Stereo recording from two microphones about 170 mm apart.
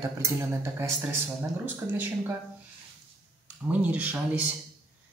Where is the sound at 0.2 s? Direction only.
15° right (ahead or behind).